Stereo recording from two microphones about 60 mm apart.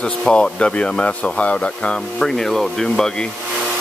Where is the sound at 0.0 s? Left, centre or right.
Centre.